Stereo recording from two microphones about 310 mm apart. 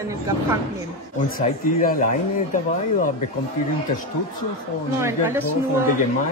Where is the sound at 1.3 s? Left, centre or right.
Left.